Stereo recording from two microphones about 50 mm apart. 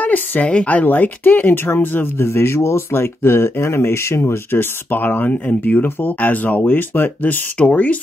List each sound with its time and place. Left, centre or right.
0.0 s a woman's voice: left
0.8 s speech: left
7.5 s speech: left